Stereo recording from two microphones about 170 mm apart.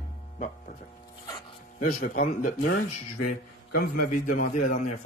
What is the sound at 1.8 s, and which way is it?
Speech, 55° left (ahead or behind).